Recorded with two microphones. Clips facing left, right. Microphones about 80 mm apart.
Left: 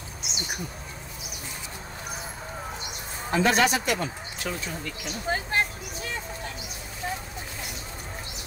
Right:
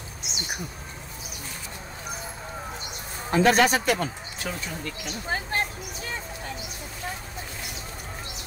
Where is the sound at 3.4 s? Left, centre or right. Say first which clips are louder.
Right 3 dB; right.